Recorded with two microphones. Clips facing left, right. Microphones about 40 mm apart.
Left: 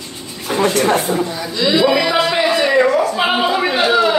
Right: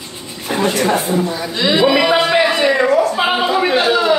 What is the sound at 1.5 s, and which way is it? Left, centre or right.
Speech, right.